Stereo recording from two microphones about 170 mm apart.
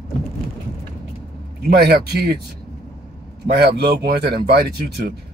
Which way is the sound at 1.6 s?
65° right (ahead or behind).